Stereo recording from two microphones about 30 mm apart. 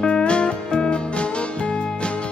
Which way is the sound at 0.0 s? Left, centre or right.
Left.